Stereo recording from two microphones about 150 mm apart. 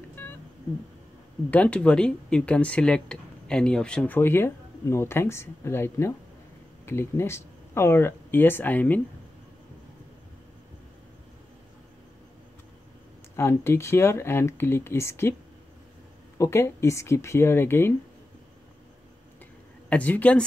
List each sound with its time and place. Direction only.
0.1 s cat: 10° left (ahead or behind)
1.5 s speech: 10° left (ahead or behind)
13.4 s speech: 15° left (ahead or behind)
16.3 s speech: 15° left (ahead or behind)
19.9 s speech: 10° left (ahead or behind)